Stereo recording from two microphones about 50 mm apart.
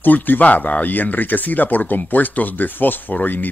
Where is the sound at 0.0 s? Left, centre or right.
Left.